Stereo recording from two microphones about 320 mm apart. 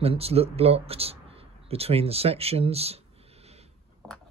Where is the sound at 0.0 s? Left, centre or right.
Centre.